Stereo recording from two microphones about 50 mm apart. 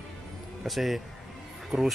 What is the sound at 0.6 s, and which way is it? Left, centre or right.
Speech, centre.